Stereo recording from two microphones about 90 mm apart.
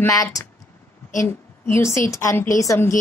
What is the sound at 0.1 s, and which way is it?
Speech, 40° left (ahead or behind).